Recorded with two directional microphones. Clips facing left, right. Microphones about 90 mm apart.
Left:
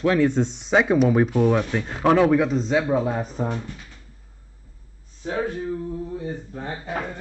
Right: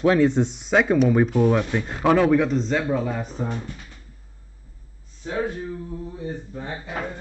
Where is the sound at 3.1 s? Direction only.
35° left (ahead or behind).